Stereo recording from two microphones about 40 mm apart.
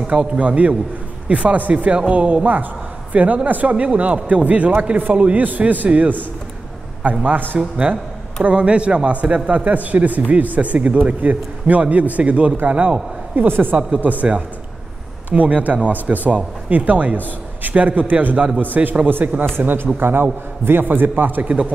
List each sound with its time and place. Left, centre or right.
0.0 s a man's voice: right
0.4 s a man's voice: right
3.7 s a man's voice: right
4.9 s a man's voice: right
13.5 s a man's voice: right
15.2 s a man's voice: right
21.5 s a man's voice: right